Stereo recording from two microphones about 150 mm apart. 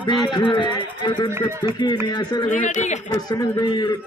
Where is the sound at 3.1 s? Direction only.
25° left (ahead or behind).